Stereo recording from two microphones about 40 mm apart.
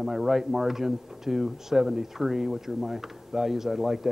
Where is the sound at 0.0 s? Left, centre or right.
Centre.